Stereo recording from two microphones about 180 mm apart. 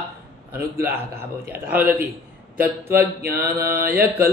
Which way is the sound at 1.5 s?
10° right (ahead or behind).